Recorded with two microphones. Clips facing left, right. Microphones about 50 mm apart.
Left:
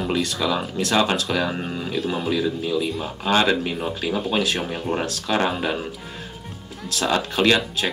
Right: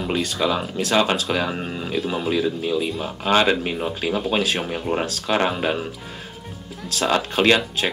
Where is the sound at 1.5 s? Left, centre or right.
Centre.